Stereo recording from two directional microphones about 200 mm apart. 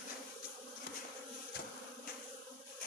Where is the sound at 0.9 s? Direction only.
50° left (ahead or behind).